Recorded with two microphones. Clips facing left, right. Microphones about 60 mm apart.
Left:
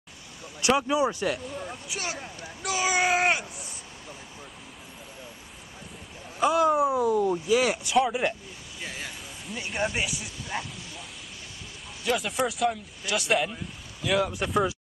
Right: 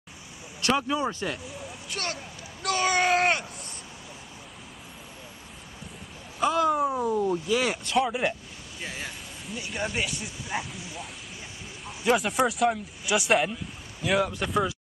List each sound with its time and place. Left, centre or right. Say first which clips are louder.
0.6 s speech: left 2 dB; centre
1.2 s speech: left 4 dB; centre
2.6 s a sound: right 1 dB; centre
6.5 s speech: left 2 dB; centre
8.8 s a sound: right 1 dB; centre
9.8 s speech: left 2 dB; centre
10.5 s speech: right 1 dB; centre
12.2 s speech: right 2 dB; centre
12.7 s speech: right 3 dB; centre
14.0 s speech: even; centre